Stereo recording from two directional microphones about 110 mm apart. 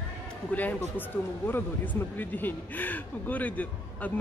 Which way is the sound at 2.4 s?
15° left (ahead or behind).